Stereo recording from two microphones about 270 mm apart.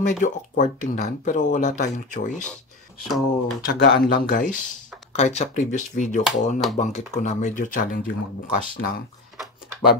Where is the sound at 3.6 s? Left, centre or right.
Left.